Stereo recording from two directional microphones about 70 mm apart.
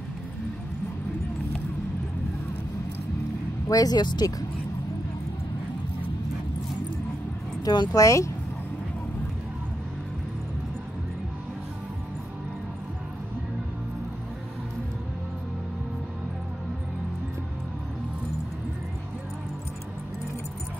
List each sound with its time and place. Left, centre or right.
3.6 s speech: left
7.6 s speech: left
8.0 s speech: left